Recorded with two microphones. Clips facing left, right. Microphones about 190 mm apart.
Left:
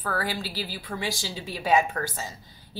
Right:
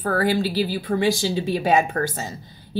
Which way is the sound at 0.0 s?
50° right (ahead or behind).